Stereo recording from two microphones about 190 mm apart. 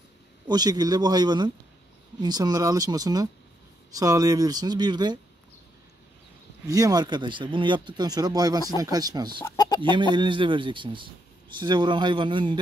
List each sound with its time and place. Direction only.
0.5 s speech: 20° right (ahead or behind)
6.7 s speech: 20° right (ahead or behind)
9.4 s speech: 20° left (ahead or behind)
9.8 s speech: 25° right (ahead or behind)